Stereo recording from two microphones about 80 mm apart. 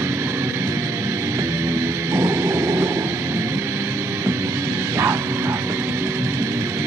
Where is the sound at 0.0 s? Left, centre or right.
Right.